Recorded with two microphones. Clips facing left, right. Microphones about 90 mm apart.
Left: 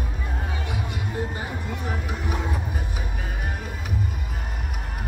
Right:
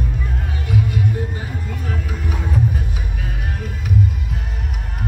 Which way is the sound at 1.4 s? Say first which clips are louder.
Right 2 dB; 15° left (ahead or behind).